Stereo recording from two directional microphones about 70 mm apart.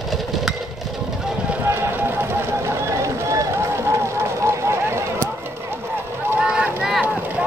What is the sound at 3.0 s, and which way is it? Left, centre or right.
Run, right.